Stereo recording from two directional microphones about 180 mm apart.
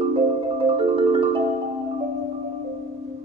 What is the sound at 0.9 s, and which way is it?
Marimba, 30° right (ahead or behind).